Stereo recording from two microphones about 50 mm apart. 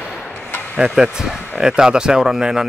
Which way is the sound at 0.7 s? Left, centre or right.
Centre.